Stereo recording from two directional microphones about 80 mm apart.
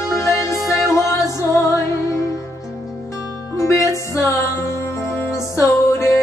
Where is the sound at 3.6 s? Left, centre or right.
Left.